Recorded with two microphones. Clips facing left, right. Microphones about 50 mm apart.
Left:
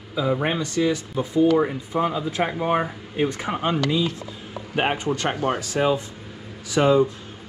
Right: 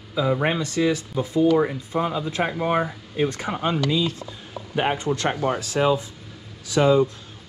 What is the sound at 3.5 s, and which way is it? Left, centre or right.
Speech, left.